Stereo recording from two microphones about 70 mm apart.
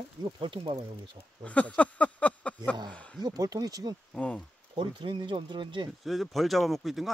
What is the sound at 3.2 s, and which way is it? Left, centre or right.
Speech, right.